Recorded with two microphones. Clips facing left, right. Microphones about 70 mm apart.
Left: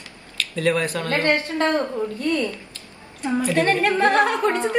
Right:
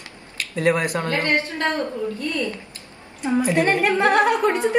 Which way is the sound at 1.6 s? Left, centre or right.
Left.